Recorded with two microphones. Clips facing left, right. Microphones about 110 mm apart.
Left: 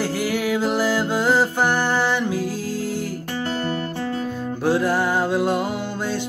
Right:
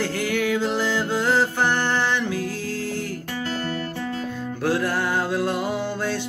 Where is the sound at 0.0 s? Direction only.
10° left (ahead or behind).